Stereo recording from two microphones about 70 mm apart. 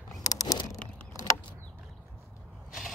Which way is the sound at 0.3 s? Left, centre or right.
Left.